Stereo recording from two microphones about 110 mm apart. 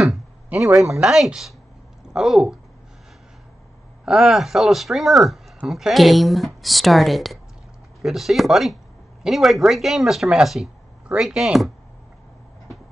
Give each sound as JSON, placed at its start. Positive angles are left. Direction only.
{"t": 0.5, "sound": "speech", "side_deg": -15}
{"t": 1.0, "sound": "speech", "side_deg": -5}
{"t": 4.0, "sound": "speech", "side_deg": 0}